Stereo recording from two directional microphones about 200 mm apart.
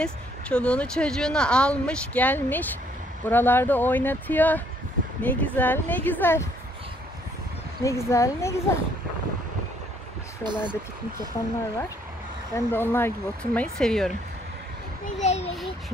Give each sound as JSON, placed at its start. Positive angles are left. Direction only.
{"t": 0.0, "sound": "speech", "side_deg": 5}
{"t": 7.8, "sound": "speech", "side_deg": 15}
{"t": 10.4, "sound": "speech", "side_deg": -20}
{"t": 12.5, "sound": "speech", "side_deg": 10}
{"t": 15.1, "sound": "a sound", "side_deg": 35}